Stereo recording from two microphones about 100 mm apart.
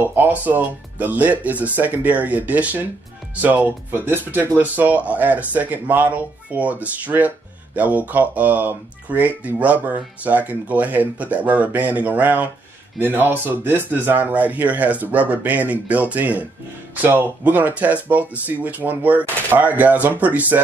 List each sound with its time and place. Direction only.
0.0 s speech: 20° right (ahead or behind)